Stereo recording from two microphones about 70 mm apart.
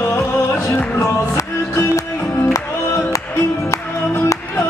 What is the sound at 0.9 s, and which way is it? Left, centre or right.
Music, left.